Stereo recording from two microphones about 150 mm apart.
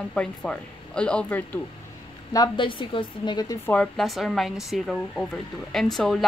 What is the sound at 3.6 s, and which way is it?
A woman's voice, 10° left (ahead or behind).